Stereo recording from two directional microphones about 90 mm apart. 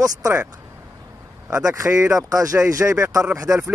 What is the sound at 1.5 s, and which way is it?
Speech, 35° right (ahead or behind).